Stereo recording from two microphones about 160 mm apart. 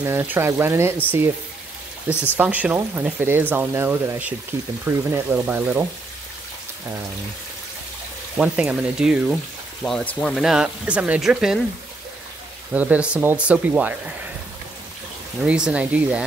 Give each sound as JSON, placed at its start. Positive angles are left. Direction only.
{"t": 0.0, "sound": "speech", "side_deg": -15}
{"t": 2.3, "sound": "speech", "side_deg": -10}
{"t": 8.4, "sound": "speech", "side_deg": -5}
{"t": 12.7, "sound": "speech", "side_deg": -10}
{"t": 15.4, "sound": "speech", "side_deg": -5}